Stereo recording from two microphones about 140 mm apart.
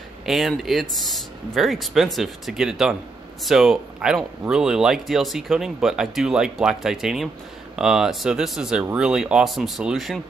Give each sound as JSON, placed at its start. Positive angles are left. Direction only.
{"t": 0.2, "sound": "speech", "side_deg": 0}